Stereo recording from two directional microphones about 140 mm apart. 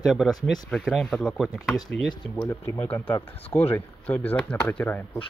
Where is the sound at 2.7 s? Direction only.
15° left (ahead or behind).